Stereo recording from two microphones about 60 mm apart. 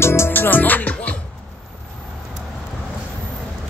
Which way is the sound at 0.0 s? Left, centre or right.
Left.